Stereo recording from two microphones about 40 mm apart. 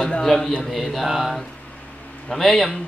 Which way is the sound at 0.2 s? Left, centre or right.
Centre.